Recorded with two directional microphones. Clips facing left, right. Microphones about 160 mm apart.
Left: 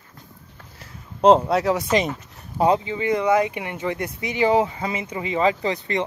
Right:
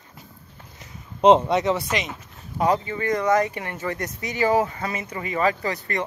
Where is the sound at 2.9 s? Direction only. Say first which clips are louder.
Left 2 dB; 15° left (ahead or behind).